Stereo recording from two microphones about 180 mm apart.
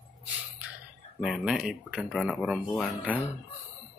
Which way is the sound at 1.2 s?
Centre (ahead or behind).